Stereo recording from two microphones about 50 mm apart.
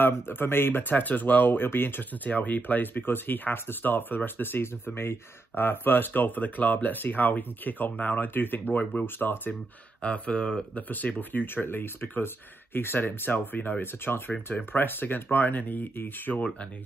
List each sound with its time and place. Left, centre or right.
0.0 s speech: left
0.8 s speech: left
5.6 s speech: left
10.0 s speech: left